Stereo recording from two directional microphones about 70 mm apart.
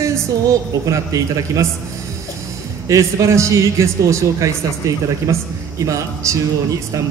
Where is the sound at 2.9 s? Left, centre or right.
Right.